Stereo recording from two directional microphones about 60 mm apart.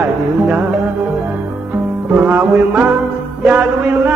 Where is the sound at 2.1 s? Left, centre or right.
Right.